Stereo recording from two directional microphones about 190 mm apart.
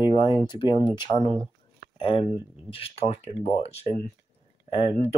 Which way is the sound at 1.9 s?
30° left (ahead or behind).